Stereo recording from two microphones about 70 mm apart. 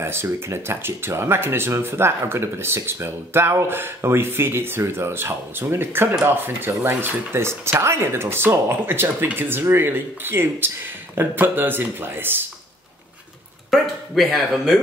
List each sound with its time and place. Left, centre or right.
0.0 s speech: right
13.7 s speech: centre